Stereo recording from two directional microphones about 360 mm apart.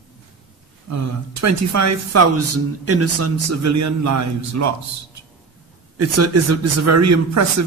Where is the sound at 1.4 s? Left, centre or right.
Right.